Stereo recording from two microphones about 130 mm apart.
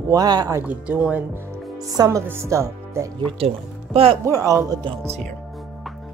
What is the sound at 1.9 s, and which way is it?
Speech, 25° right (ahead or behind).